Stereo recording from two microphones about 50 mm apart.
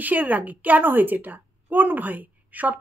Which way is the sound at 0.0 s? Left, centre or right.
Right.